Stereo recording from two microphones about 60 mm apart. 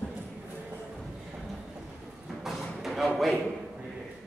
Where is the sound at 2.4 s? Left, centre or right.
Centre.